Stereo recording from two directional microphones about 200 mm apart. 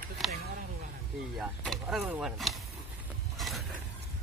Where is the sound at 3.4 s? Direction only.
Centre (ahead or behind).